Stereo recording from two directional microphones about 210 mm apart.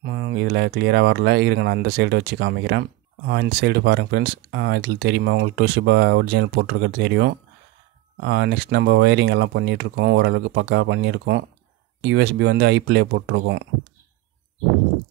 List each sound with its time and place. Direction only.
0.0 s speech: 55° right (ahead or behind)